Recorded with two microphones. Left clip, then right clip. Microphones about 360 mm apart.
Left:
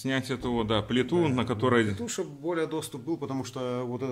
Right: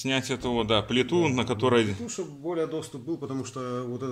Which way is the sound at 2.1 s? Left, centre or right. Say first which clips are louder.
Left 1 dB; left.